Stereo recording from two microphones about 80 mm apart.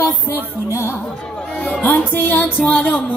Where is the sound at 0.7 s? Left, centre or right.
Left.